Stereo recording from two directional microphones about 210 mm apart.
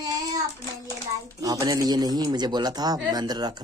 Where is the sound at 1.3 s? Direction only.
20° right (ahead or behind).